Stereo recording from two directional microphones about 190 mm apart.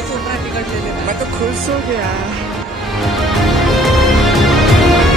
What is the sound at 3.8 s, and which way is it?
Music, centre (ahead or behind).